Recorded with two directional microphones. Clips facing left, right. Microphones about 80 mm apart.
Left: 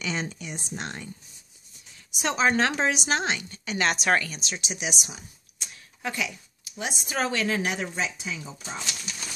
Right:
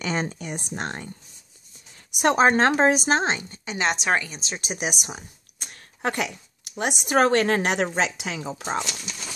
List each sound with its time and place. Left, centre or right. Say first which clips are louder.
0.0 s speech: right 4 dB; right
2.1 s a woman's voice: right 5 dB; right; by 4.4 s centre
4.6 s speech: right 5 dB; right